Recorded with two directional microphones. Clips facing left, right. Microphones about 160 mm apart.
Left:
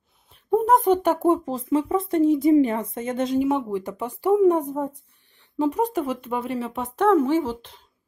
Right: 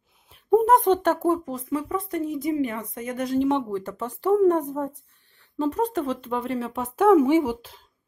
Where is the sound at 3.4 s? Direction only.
5° left (ahead or behind); by 7.5 s 15° right (ahead or behind).